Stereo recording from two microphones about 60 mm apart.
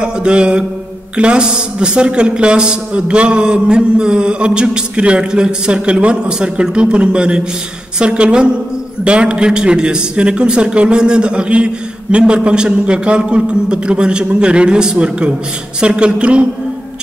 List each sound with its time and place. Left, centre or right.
0.0 s a man's voice: centre